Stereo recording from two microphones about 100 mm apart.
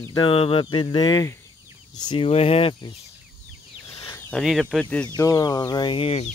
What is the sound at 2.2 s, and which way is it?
Speech, 85° left.